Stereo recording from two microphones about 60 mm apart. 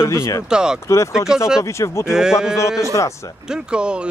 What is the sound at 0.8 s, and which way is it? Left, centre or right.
Speech, left.